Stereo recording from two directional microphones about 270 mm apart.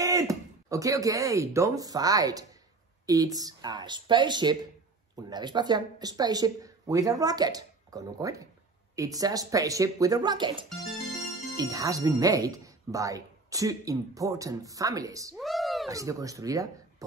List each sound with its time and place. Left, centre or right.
0.0 s speech: centre
15.3 s a sound: centre
15.9 s speech: centre